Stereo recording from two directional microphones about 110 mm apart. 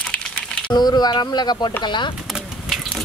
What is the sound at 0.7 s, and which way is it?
A woman's voice, 40° left (ahead or behind).